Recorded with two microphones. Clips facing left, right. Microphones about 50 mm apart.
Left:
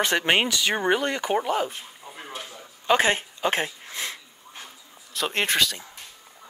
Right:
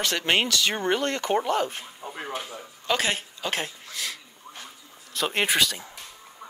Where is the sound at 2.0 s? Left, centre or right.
Right.